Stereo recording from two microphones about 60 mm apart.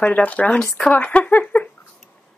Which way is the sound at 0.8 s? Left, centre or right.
Left.